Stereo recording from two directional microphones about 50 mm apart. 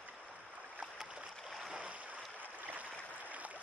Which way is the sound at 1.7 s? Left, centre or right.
Right.